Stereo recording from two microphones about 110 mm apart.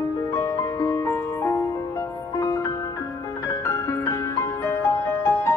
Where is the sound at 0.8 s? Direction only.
25° left (ahead or behind).